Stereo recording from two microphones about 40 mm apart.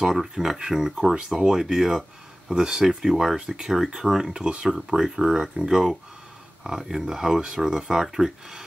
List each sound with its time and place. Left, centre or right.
0.0 s speech: centre
1.1 s speech: centre